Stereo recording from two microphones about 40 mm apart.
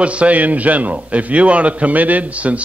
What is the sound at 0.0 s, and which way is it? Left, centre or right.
A man's voice, right.